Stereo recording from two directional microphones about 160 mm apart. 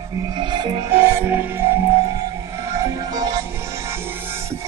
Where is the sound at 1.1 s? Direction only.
15° right (ahead or behind).